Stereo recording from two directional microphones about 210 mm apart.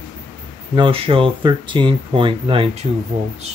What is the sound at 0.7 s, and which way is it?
Speech, 25° right (ahead or behind).